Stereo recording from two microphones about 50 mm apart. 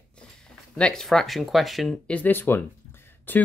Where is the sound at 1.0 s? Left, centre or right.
Centre.